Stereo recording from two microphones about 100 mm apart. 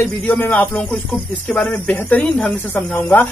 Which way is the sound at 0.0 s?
20° left (ahead or behind).